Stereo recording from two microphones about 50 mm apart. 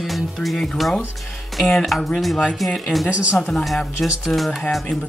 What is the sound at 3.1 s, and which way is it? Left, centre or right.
Speech, right.